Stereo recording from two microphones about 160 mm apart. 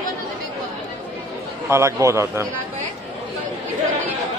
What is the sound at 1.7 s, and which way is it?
Speech, 15° right (ahead or behind).